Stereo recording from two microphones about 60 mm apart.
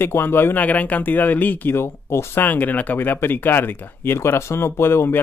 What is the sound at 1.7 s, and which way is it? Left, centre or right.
Speech, left.